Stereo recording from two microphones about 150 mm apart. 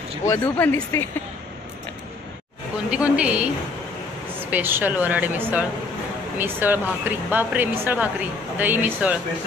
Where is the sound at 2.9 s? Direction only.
10° right (ahead or behind).